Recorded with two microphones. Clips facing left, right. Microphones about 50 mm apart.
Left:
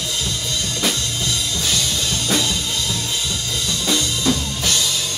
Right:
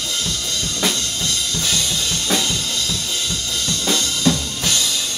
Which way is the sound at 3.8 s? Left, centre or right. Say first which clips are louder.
Right 1 dB; centre.